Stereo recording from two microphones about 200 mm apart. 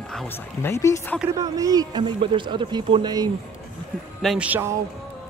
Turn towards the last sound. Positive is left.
turn(degrees=-10)  # may be behind; listen again after turning